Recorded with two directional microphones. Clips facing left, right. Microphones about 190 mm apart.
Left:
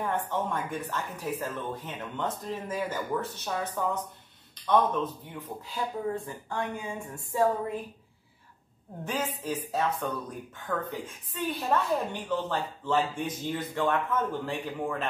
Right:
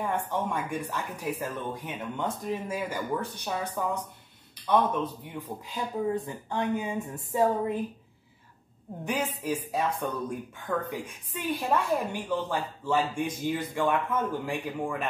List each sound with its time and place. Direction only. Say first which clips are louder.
0.0 s a woman's voice: even; 10° right (ahead or behind)
9.0 s a woman's voice: right 2 dB; 15° right (ahead or behind)